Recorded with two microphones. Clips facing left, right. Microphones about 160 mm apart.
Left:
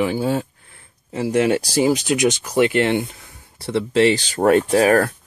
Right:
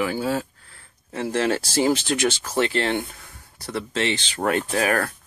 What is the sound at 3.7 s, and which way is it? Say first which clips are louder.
Speech: left 9 dB; 30° left (ahead or behind).